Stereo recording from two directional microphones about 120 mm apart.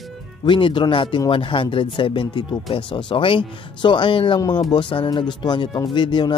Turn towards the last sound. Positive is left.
turn(degrees=40)  # may be behind; listen again after turning